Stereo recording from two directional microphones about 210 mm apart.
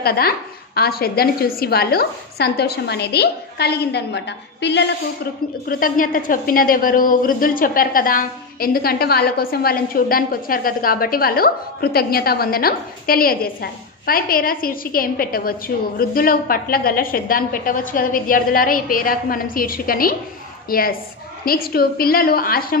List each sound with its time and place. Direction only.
0.0 s a woman's voice: 45° left (ahead or behind)